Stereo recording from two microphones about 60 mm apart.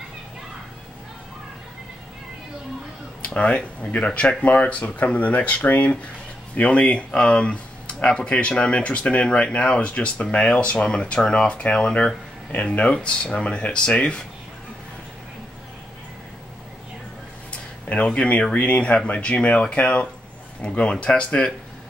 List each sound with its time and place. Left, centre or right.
3.3 s speech: centre
17.8 s speech: left